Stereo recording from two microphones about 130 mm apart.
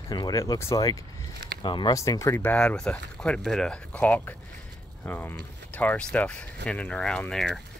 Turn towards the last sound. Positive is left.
turn(degrees=5)  # may be behind; listen again after turning